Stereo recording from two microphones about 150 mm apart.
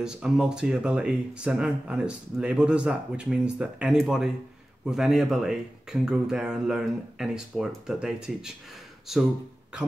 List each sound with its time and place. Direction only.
0.0 s speech: 5° right (ahead or behind)